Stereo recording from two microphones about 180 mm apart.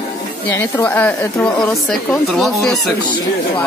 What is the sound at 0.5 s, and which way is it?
Speech, 15° left (ahead or behind).